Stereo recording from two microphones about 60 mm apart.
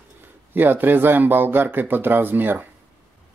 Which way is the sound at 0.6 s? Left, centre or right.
Right.